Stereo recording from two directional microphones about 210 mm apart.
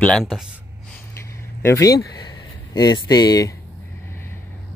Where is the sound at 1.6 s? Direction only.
15° left (ahead or behind).